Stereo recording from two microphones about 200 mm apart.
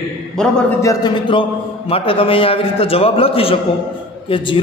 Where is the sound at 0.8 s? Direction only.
20° left (ahead or behind).